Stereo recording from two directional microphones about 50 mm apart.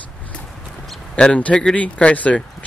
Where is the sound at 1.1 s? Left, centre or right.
Centre.